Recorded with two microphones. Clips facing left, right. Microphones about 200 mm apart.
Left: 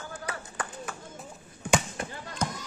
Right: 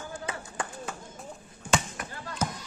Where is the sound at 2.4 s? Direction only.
5° right (ahead or behind).